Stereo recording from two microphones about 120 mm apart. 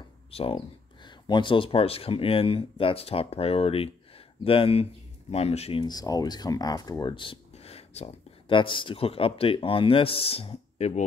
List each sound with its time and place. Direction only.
0.3 s speech: 55° left (ahead or behind)
1.0 s speech: 40° left (ahead or behind); by 5.9 s 55° left (ahead or behind)
5.9 s speech: 30° left (ahead or behind)
7.5 s a sound: 60° left (ahead or behind)
8.5 s speech: 45° left (ahead or behind); by 11.1 s 65° left (ahead or behind)